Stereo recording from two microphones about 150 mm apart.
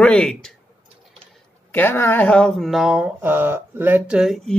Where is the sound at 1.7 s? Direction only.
15° left (ahead or behind); by 4.5 s 5° right (ahead or behind).